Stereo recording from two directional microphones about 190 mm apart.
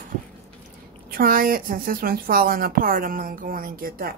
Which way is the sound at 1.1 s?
50° right (ahead or behind).